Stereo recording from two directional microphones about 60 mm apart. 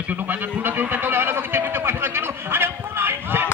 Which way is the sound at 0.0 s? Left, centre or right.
Right.